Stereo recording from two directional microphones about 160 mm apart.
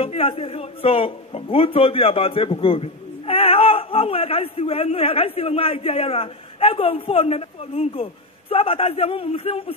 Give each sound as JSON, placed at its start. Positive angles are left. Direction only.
{"t": 0.0, "sound": "a man's voice", "side_deg": 35}